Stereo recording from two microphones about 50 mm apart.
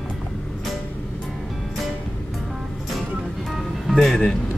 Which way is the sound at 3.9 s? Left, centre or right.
Centre.